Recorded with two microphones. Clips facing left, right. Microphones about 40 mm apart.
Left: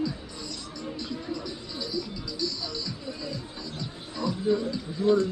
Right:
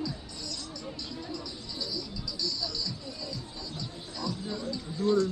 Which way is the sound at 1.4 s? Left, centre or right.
Centre.